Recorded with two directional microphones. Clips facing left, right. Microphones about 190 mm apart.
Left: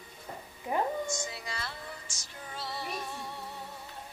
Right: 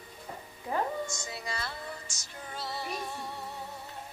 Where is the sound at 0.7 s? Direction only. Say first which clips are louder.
Left 1 dB; 20° left (ahead or behind).